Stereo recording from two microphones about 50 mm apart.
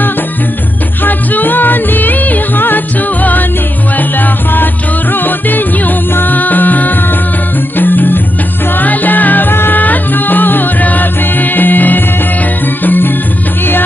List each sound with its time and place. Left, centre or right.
1.0 s music: left
5.1 s music: left